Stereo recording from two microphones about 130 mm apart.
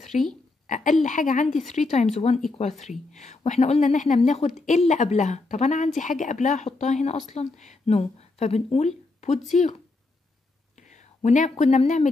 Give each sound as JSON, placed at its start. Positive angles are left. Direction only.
{"t": 0.1, "sound": "a woman's voice", "side_deg": 70}
{"t": 0.7, "sound": "a woman's voice", "side_deg": 80}
{"t": 1.7, "sound": "speech", "side_deg": 65}
{"t": 3.1, "sound": "a woman's voice", "side_deg": 65}
{"t": 10.8, "sound": "speech", "side_deg": 65}